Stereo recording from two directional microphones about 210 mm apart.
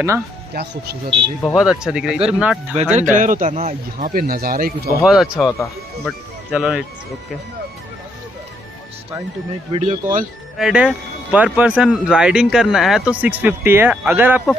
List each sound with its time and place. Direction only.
0.5 s speech: 50° right (ahead or behind)
1.4 s speech: centre (ahead or behind)
2.7 s speech: 35° right (ahead or behind)
4.0 s speech: 45° right (ahead or behind)
5.0 s speech: 5° right (ahead or behind)
9.7 s speech: 30° right (ahead or behind)
10.6 s speech: 5° right (ahead or behind)